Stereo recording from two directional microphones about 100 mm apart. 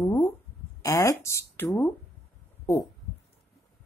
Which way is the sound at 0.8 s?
30° left (ahead or behind).